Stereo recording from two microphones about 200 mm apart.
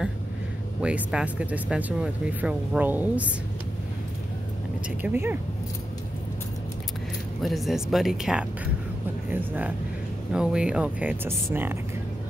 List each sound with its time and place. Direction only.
0.7 s speech: 5° right (ahead or behind)
5.0 s speech: 10° right (ahead or behind)
7.4 s speech: centre (ahead or behind)